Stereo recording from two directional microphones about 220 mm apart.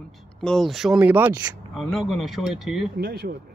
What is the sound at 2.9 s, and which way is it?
Speech, 50° right (ahead or behind).